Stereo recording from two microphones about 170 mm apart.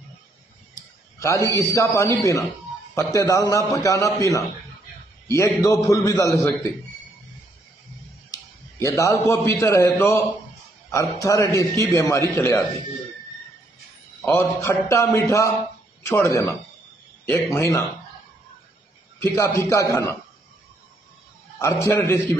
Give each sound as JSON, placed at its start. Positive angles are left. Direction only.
{"t": 1.2, "sound": "a man's voice", "side_deg": 20}
{"t": 8.3, "sound": "a sound", "side_deg": 20}
{"t": 9.3, "sound": "a man's voice", "side_deg": 15}
{"t": 14.2, "sound": "a man's voice", "side_deg": 15}
{"t": 19.1, "sound": "a man's voice", "side_deg": 15}
{"t": 21.8, "sound": "a man's voice", "side_deg": 15}